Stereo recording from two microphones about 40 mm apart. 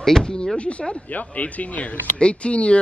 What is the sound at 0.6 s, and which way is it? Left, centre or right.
Speech, left.